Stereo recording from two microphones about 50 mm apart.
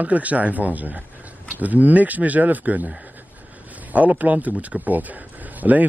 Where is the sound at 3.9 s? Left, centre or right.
Right.